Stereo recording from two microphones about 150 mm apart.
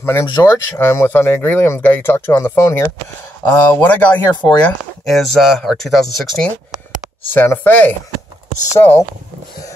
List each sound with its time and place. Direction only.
0.0 s speech: 15° left (ahead or behind); by 6.5 s centre (ahead or behind)
7.2 s speech: 15° left (ahead or behind)